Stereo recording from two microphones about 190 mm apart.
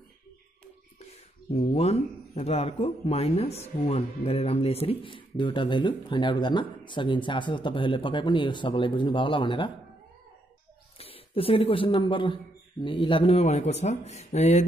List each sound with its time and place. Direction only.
1.5 s speech: 35° left (ahead or behind)
11.0 s a man's voice: 30° left (ahead or behind)